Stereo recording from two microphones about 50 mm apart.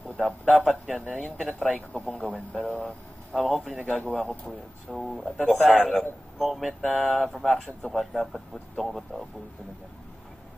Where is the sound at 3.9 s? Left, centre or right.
Centre.